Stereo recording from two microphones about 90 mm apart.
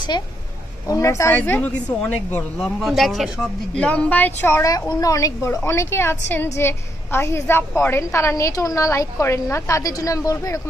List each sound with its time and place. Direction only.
0.1 s a woman's voice: 45° left (ahead or behind)
1.3 s a woman's voice: 20° left (ahead or behind)
2.8 s speech: centre (ahead or behind)
3.7 s speech: 15° left (ahead or behind)
4.6 s a woman's voice: 45° left (ahead or behind)